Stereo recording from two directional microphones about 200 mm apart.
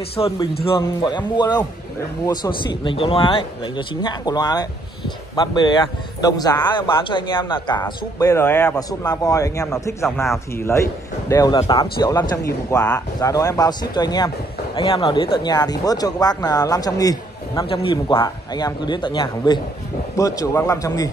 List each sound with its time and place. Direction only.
0.1 s speech: 30° left (ahead or behind)